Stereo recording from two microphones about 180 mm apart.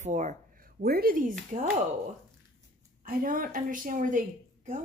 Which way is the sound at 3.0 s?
50° right (ahead or behind).